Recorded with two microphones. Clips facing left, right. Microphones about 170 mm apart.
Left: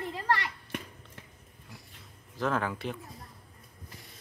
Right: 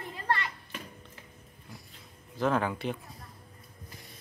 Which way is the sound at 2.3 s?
Centre (ahead or behind).